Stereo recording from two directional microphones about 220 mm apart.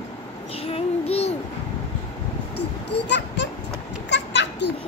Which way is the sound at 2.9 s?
55° left (ahead or behind).